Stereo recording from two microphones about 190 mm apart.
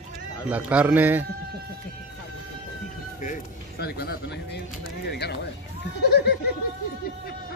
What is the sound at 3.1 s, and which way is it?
Speech, 45° left (ahead or behind).